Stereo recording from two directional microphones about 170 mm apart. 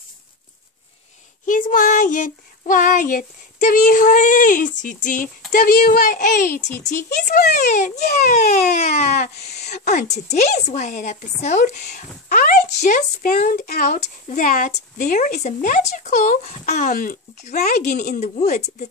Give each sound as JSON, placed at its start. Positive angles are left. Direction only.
{"t": 1.4, "sound": "a woman's voice", "side_deg": 50}
{"t": 8.3, "sound": "baby cry", "side_deg": 40}
{"t": 9.6, "sound": "a woman's voice", "side_deg": 40}